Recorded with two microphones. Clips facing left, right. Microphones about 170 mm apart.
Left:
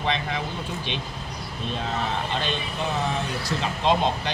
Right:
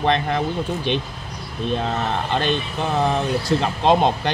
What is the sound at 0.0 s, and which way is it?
Speech, 55° right (ahead or behind).